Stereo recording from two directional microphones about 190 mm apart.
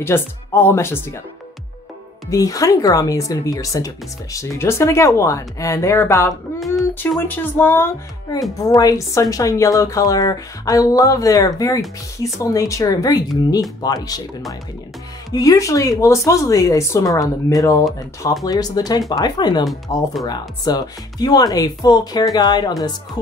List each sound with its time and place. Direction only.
0.0 s speech: 10° left (ahead or behind)
2.2 s speech: 20° left (ahead or behind)
15.3 s speech: 20° left (ahead or behind)